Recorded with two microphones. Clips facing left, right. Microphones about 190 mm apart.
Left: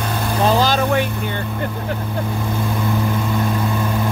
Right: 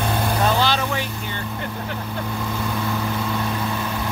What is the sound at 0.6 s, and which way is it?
Vehicle, 45° left (ahead or behind).